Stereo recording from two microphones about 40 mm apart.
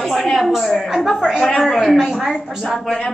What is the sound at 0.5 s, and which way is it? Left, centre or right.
A woman's voice, centre.